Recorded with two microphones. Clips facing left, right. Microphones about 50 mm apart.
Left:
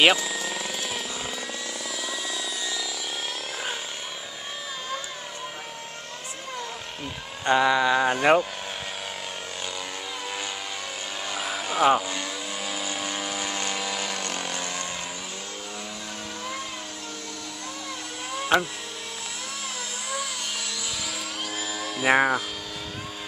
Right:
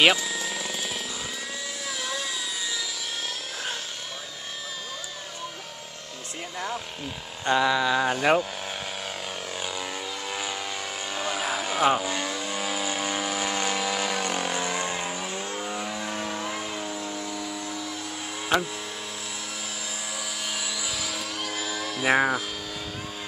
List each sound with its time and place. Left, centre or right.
0.0 s vehicle: centre
2.0 s a sound: centre
7.4 s speech: centre
11.1 s vehicle: centre
18.5 s speech: centre
21.0 s dental drill: centre